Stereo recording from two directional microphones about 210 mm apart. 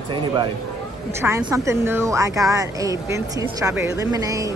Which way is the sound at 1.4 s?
15° right (ahead or behind).